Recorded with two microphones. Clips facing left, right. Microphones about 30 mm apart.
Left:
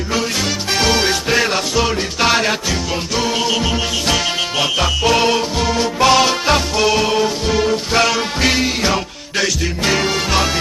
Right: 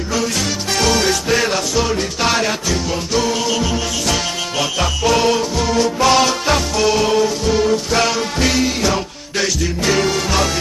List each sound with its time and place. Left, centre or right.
0.7 s music: centre